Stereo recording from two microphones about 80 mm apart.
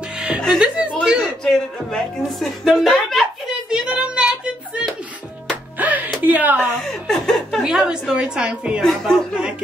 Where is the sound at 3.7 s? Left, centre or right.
Centre.